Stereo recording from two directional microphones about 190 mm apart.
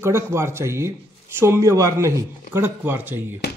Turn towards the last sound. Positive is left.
turn(degrees=-10)  # may be behind; listen again after turning